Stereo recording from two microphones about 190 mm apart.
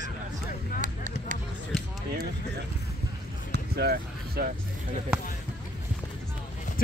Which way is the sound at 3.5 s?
55° right (ahead or behind).